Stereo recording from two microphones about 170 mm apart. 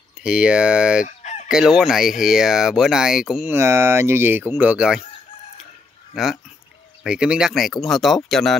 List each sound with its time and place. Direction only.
0.2 s speech: 5° right (ahead or behind)
1.0 s fowl: 45° left (ahead or behind)
1.5 s speech: 5° right (ahead or behind)
3.5 s speech: 15° right (ahead or behind)
6.2 s speech: centre (ahead or behind)